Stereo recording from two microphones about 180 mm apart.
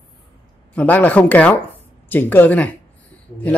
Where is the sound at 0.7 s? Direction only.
10° left (ahead or behind).